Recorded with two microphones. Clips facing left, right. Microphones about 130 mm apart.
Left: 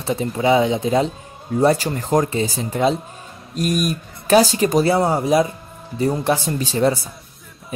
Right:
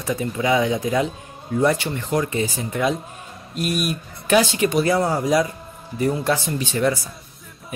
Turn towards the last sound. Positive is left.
turn(degrees=30)  # may be behind; listen again after turning